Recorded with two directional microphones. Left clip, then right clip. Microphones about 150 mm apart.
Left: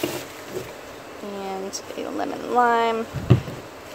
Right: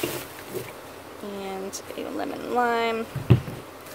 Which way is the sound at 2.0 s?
Centre (ahead or behind).